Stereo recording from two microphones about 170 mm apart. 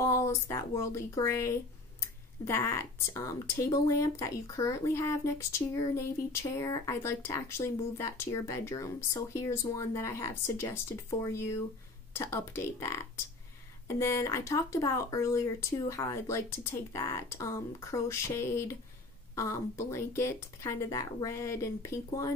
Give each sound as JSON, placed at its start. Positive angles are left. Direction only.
{"t": 0.0, "sound": "speech", "side_deg": 15}